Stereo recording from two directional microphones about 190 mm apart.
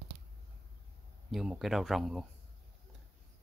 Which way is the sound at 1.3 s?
Centre (ahead or behind).